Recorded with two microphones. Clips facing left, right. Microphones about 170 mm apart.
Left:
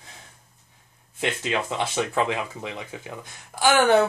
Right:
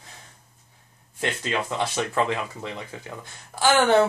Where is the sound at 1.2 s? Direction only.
15° left (ahead or behind).